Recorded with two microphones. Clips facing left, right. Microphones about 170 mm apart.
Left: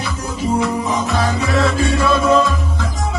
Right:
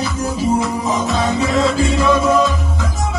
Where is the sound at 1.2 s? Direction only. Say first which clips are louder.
Right 1 dB; 25° right (ahead or behind).